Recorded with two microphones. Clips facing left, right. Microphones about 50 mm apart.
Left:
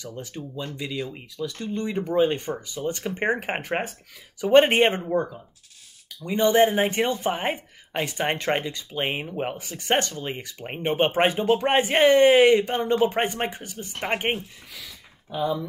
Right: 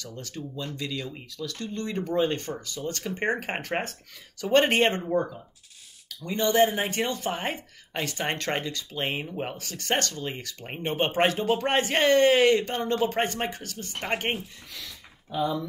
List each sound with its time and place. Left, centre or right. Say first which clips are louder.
0.0 s speech: left 2 dB; centre
6.2 s speech: left 3 dB; left
14.7 s a sound: even; centre